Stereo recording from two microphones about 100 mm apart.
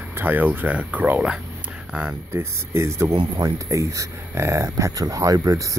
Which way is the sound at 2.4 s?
25° right (ahead or behind).